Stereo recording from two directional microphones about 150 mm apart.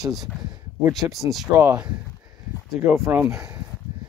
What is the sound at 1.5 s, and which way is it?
Speech, 10° right (ahead or behind).